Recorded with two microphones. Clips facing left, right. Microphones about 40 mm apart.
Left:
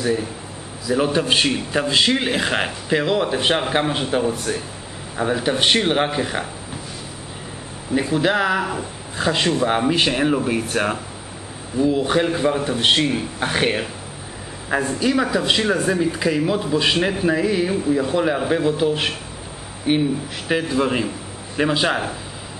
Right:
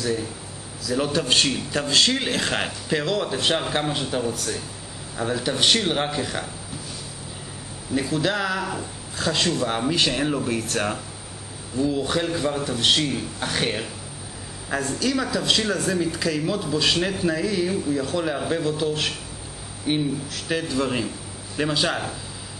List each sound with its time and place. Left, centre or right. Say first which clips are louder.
0.0 s speech: left 4 dB; left
7.9 s speech: left 5 dB; left